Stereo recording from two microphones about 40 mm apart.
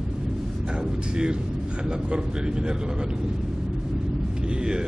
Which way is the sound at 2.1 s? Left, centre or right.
Right.